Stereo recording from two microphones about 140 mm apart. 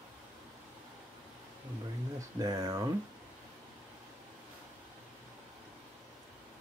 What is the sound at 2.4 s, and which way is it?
Speech, 25° right (ahead or behind).